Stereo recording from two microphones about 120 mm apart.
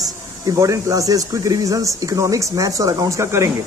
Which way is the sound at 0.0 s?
30° right (ahead or behind).